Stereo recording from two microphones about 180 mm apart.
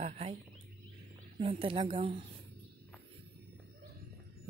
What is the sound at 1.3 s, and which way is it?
Speech, 30° right (ahead or behind).